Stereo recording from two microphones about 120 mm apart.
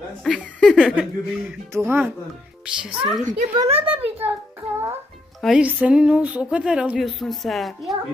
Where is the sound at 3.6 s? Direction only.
50° right (ahead or behind).